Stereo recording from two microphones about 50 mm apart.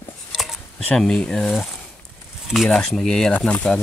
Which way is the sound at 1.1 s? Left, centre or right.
Centre.